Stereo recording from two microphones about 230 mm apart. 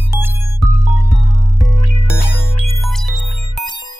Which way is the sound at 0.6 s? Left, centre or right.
Centre.